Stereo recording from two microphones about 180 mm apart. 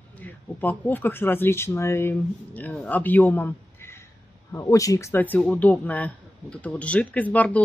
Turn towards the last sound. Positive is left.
turn(degrees=10)  # may be behind; listen again after turning